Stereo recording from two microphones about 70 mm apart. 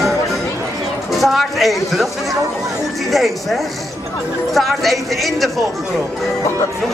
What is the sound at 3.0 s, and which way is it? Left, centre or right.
Speech, centre.